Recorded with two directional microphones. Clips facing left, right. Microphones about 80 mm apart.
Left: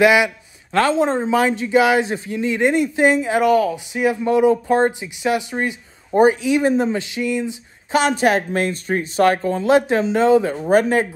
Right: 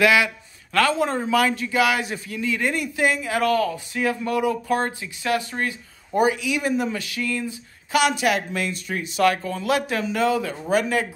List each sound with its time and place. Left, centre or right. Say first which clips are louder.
0.0 s a man's voice: left 4 dB; left
6.1 s speech: left 6 dB; left
8.0 s speech: left 4 dB; left